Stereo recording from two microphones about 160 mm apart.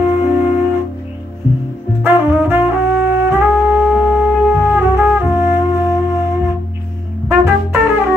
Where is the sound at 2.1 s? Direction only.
15° right (ahead or behind).